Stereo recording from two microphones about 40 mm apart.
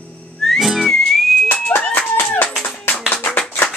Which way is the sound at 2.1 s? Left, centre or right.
Left.